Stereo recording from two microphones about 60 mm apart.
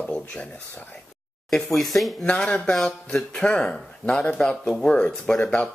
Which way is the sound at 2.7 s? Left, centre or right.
Centre.